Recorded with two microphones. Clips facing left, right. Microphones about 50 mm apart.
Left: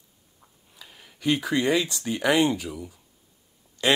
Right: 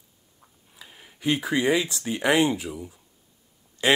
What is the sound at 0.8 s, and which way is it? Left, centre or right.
Speech, centre.